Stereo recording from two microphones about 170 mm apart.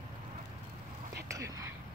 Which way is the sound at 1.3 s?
20° right (ahead or behind).